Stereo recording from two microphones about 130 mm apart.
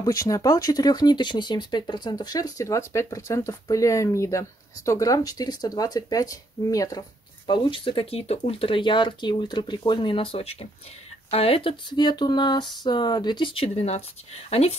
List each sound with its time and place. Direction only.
0.0 s speech: 25° left (ahead or behind); by 14.8 s 55° left (ahead or behind)